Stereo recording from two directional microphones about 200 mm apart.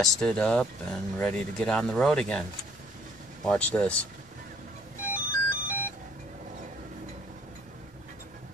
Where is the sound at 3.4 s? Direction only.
5° left (ahead or behind).